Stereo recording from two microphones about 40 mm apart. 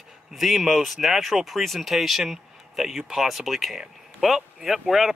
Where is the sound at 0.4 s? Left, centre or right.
Centre.